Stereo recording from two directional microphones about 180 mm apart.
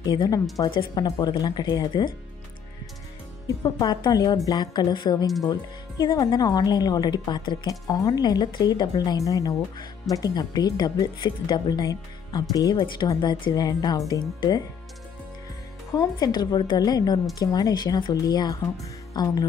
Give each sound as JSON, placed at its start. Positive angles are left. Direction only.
{"t": 0.0, "sound": "a woman's voice", "side_deg": 20}
{"t": 3.8, "sound": "a woman's voice", "side_deg": 25}
{"t": 15.9, "sound": "a woman's voice", "side_deg": 20}